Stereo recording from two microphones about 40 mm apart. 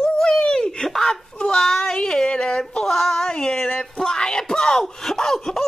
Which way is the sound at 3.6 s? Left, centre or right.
Left.